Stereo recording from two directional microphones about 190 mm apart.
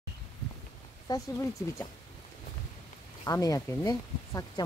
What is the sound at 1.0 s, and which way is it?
Speech, 20° left (ahead or behind).